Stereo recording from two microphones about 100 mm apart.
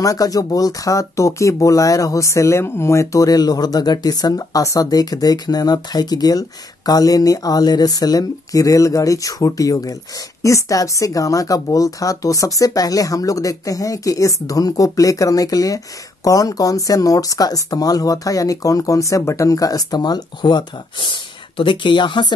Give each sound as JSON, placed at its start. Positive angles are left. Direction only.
{"t": 0.0, "sound": "speech", "side_deg": 35}